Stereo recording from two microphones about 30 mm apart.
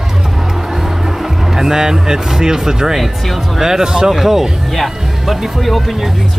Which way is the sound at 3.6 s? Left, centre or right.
Centre.